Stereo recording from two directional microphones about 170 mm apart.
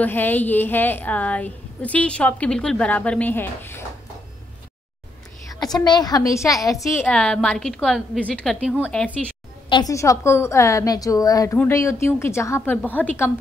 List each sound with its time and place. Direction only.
0.0 s a woman's voice: 10° left (ahead or behind)
5.6 s a woman's voice: 25° left (ahead or behind); by 8.5 s 5° left (ahead or behind)
8.5 s speech: 10° right (ahead or behind)
8.8 s a woman's voice: 5° left (ahead or behind)
9.7 s a woman's voice: 25° left (ahead or behind)